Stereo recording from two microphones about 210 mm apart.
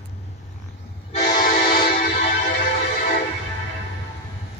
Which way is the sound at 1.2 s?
40° left (ahead or behind).